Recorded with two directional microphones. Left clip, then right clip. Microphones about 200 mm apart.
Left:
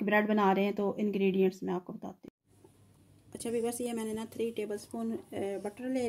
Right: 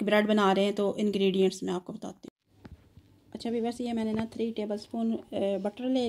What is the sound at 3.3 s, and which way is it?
Speech, 20° right (ahead or behind).